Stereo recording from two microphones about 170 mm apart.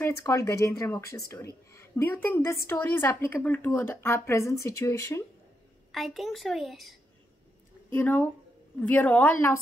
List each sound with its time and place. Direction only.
0.0 s a woman's voice: 15° left (ahead or behind)
5.9 s a child's voice: centre (ahead or behind)
7.9 s a woman's voice: 10° left (ahead or behind)